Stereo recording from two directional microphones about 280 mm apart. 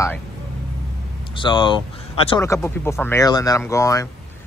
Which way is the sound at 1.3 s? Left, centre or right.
Centre.